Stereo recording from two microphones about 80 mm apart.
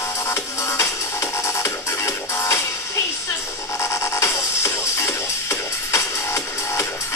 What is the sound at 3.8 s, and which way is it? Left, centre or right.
Music, left.